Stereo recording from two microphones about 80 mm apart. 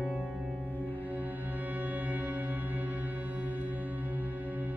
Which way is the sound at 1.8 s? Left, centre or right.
Right.